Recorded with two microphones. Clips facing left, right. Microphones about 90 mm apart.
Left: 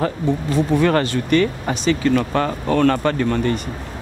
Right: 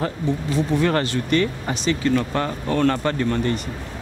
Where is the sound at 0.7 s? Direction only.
60° left (ahead or behind).